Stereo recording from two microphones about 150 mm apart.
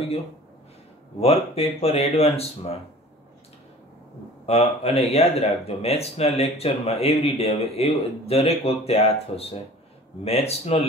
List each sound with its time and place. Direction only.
1.2 s speech: 40° left (ahead or behind)
4.5 s speech: 45° left (ahead or behind)